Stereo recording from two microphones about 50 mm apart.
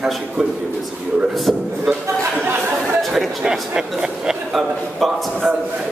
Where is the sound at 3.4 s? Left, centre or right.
Centre.